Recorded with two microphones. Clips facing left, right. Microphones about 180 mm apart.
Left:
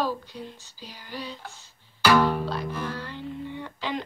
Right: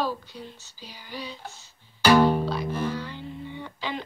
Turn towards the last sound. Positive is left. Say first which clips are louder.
# left 2 dB
turn(degrees=-5)  # may be behind; listen again after turning